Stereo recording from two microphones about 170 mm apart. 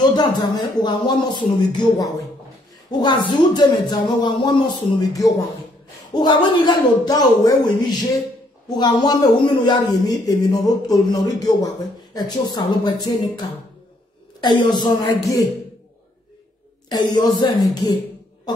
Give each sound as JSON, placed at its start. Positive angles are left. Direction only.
{"t": 0.1, "sound": "speech", "side_deg": 25}
{"t": 16.9, "sound": "speech", "side_deg": 25}